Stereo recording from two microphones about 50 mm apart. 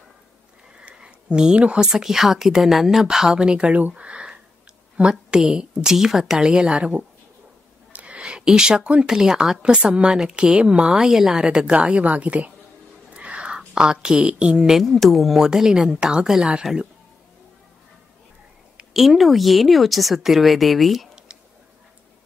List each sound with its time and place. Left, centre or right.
0.7 s speech: centre
3.3 s a woman's voice: centre
6.5 s a woman's voice: centre
7.9 s a woman's voice: right; by 9.6 s centre
9.6 s a woman's voice: right
13.1 s whispering: right
13.7 s a woman's voice: centre
14.9 s a woman's voice: centre
18.9 s speech: centre